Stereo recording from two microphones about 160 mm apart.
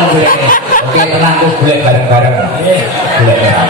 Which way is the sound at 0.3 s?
60° left (ahead or behind).